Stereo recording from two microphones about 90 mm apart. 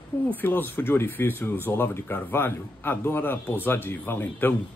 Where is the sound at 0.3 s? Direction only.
20° left (ahead or behind).